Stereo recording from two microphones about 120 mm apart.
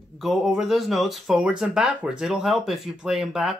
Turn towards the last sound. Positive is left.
turn(degrees=-5)  # may be behind; listen again after turning